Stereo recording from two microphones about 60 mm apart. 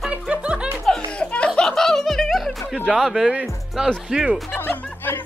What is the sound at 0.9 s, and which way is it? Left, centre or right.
Music, centre.